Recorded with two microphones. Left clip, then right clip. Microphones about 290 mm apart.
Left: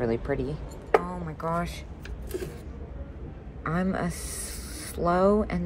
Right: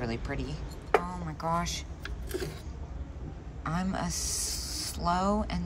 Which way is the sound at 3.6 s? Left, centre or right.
Centre.